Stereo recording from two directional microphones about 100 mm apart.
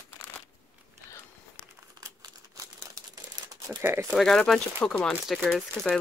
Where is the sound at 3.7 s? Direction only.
20° right (ahead or behind).